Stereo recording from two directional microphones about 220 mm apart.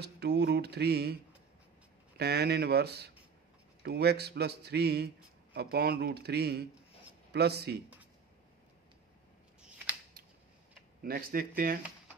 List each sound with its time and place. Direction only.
0.0 s a man's voice: 50° right (ahead or behind)
2.1 s a man's voice: 50° right (ahead or behind)
11.0 s speech: 40° right (ahead or behind)